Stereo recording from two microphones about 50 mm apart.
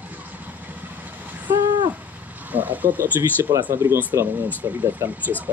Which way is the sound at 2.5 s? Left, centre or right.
Right.